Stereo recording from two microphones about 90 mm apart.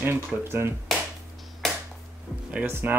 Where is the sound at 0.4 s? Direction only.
25° right (ahead or behind).